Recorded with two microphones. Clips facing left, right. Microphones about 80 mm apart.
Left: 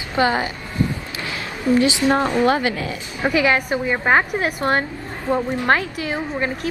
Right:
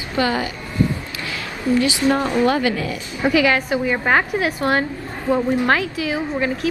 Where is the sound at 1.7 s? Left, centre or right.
Left.